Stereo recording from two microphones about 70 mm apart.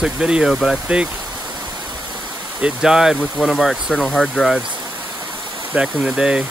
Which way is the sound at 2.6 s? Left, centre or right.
Centre.